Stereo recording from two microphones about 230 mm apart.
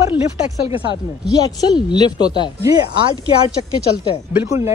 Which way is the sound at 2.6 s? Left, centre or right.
Centre.